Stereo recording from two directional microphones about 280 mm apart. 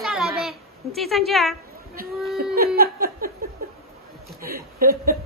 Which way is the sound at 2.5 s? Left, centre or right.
Right.